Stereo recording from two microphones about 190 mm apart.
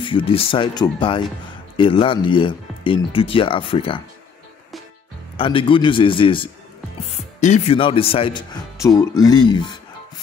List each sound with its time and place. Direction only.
0.0 s speech: 25° left (ahead or behind)
5.4 s speech: 25° left (ahead or behind)
7.3 s speech: 40° left (ahead or behind); by 9.0 s 20° left (ahead or behind)
9.5 s music: 25° left (ahead or behind)